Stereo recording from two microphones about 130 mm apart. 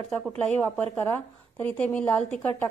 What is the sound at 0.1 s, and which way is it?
A woman's voice, 5° left (ahead or behind).